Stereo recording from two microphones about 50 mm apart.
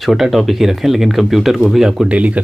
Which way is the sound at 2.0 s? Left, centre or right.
Right.